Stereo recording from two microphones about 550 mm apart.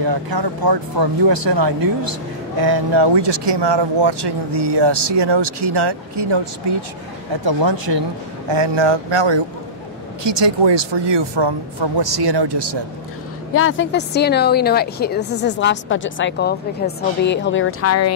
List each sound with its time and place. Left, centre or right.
0.0 s speech: right
7.4 s speech: right
13.5 s speech: left